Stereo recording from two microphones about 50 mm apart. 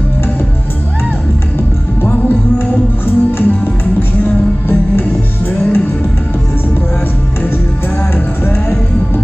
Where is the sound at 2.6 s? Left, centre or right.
Left.